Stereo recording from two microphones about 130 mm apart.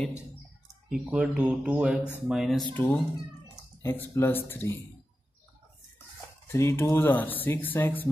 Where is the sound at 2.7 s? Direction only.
15° left (ahead or behind).